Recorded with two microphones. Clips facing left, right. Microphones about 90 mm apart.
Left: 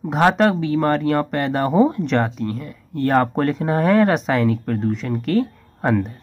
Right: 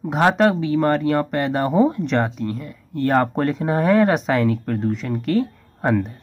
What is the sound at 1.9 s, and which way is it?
Speech, 15° right (ahead or behind).